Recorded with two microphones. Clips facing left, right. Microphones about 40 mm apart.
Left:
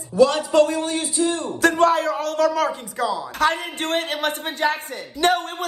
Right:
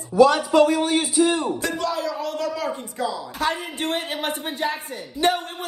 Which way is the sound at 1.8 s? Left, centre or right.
Left.